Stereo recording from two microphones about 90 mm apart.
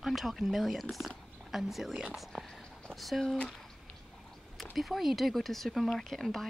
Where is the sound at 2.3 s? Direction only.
Centre (ahead or behind).